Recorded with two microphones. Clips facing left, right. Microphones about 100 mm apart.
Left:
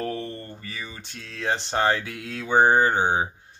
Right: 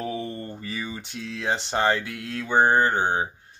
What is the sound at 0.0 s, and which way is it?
Speech, 5° right (ahead or behind).